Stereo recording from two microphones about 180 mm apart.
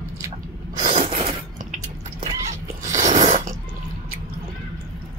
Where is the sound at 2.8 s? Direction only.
40° right (ahead or behind).